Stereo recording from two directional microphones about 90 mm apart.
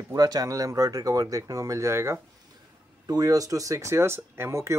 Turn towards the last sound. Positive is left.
turn(degrees=-30)  # may be behind; listen again after turning